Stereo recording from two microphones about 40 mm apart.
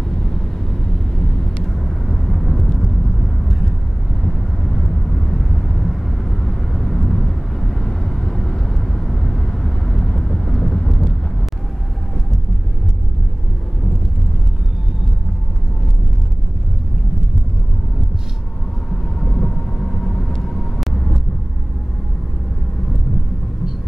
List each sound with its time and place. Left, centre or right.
0.1 s vehicle: centre
19.1 s vehicle: centre